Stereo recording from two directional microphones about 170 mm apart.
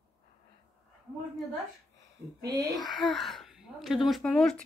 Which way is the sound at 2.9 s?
Centre (ahead or behind).